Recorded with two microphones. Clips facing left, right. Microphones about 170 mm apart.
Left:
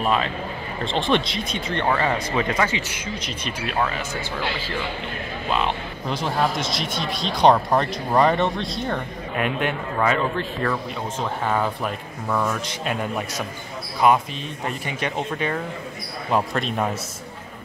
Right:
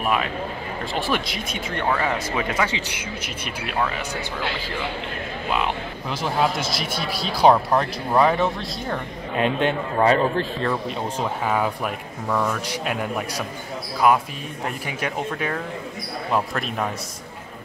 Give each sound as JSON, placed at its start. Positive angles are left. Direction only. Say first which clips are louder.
{"t": 0.9, "sound": "speech", "louder": "left 4 dB", "side_deg": -5}
{"t": 6.0, "sound": "speech", "louder": "even", "side_deg": -5}
{"t": 9.4, "sound": "a man's voice", "louder": "right 3 dB", "side_deg": -25}
{"t": 10.7, "sound": "speech", "louder": "right 2 dB", "side_deg": -10}
{"t": 14.0, "sound": "speech", "louder": "left 1 dB", "side_deg": -5}